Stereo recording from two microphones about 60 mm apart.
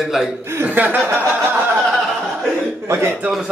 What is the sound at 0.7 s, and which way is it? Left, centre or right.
Speech, right.